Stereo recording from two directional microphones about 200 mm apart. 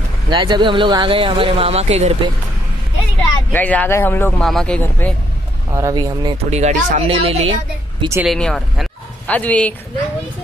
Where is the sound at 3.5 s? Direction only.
10° left (ahead or behind).